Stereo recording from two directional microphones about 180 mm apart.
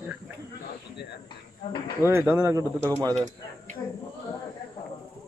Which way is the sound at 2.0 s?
10° right (ahead or behind).